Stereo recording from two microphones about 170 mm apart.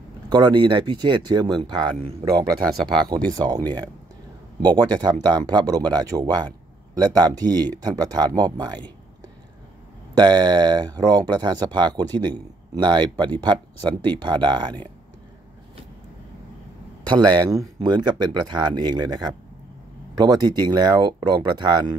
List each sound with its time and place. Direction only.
0.3 s speech: 25° right (ahead or behind)
3.3 s speech: 25° right (ahead or behind)
10.1 s speech: 25° right (ahead or behind)
17.1 s speech: 20° right (ahead or behind)